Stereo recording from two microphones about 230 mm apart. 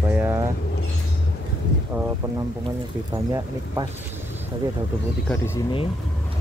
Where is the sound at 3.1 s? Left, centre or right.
Centre.